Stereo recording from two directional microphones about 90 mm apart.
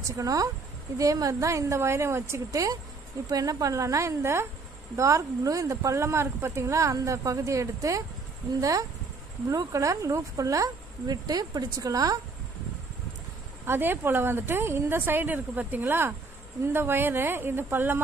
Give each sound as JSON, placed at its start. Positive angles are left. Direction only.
{"t": 0.0, "sound": "speech", "side_deg": -40}
{"t": 13.7, "sound": "speech", "side_deg": -25}